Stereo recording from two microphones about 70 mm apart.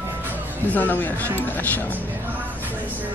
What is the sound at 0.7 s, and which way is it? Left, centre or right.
Speech, left.